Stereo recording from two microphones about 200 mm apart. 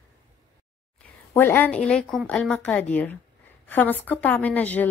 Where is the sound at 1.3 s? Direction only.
10° left (ahead or behind).